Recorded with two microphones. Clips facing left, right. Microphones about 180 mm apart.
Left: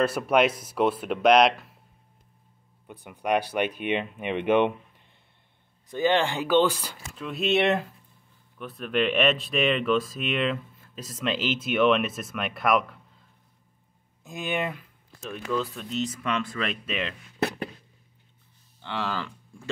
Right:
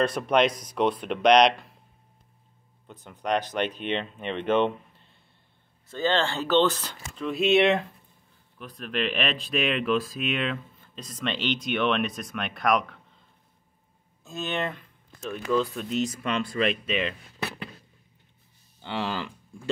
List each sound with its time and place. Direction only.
0.0 s speech: 5° left (ahead or behind)
2.9 s speech: 10° left (ahead or behind)
14.2 s speech: 15° left (ahead or behind)
16.1 s speech: 30° right (ahead or behind)
16.8 s speech: centre (ahead or behind)
18.8 s speech: 15° right (ahead or behind)